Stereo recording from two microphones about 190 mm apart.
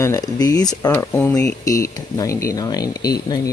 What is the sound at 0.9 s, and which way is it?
Speech, 10° left (ahead or behind).